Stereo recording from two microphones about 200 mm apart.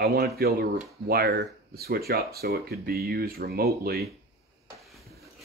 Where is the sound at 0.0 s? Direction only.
50° right (ahead or behind).